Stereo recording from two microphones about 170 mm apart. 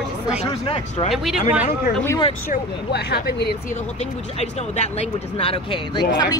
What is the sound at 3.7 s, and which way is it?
Speech, 40° left (ahead or behind).